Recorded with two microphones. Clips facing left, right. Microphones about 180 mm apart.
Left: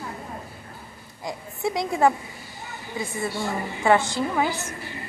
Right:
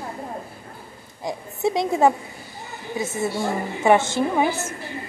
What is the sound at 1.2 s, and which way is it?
Speech, 20° right (ahead or behind).